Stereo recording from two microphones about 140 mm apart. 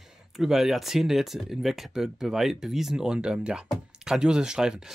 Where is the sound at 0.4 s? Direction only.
5° right (ahead or behind).